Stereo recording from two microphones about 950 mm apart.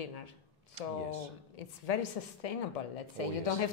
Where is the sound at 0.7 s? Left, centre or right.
Right.